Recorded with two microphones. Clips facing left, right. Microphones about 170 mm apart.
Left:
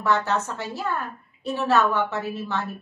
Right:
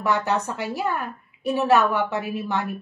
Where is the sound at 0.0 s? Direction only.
15° right (ahead or behind).